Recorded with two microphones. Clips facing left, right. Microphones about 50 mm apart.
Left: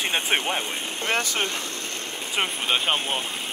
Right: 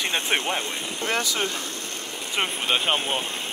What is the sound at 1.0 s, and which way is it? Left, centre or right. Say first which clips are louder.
Speech: even; left.